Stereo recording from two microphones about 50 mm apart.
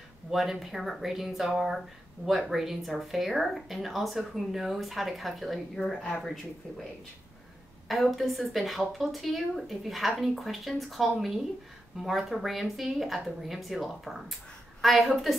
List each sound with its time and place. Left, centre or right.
0.3 s a woman's voice: centre
2.2 s speech: right
2.5 s a woman's voice: centre
5.8 s speech: centre
6.2 s a woman's voice: centre
7.9 s a woman's voice: centre